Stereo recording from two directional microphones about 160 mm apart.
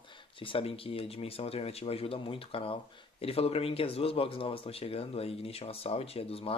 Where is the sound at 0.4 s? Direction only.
35° left (ahead or behind).